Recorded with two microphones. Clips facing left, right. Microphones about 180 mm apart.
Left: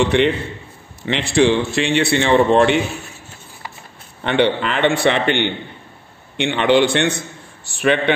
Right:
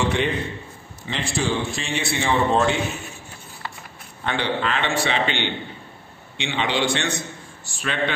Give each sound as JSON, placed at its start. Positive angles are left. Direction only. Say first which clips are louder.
{"t": 0.1, "sound": "a man's voice", "louder": "left 7 dB", "side_deg": 70}
{"t": 4.2, "sound": "a man's voice", "louder": "left 7 dB", "side_deg": 65}